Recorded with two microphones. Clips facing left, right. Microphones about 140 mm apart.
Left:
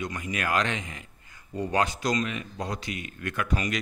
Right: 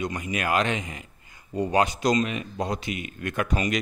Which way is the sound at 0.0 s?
20° right (ahead or behind).